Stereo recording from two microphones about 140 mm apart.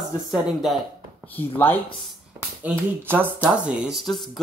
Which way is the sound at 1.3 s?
15° left (ahead or behind).